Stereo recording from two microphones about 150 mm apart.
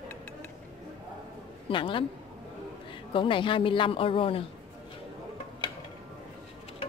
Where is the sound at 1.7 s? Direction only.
35° left (ahead or behind).